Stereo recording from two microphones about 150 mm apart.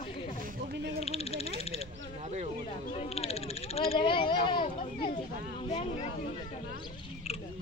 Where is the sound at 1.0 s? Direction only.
40° left (ahead or behind).